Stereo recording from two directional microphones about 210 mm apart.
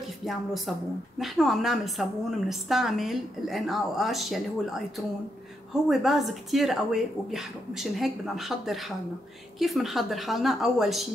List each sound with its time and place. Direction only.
0.2 s a woman's voice: centre (ahead or behind)